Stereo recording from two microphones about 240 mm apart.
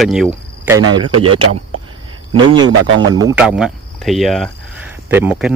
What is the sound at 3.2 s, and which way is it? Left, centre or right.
Speech, centre.